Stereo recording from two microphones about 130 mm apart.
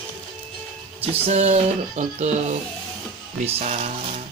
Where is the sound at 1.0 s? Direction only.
50° right (ahead or behind).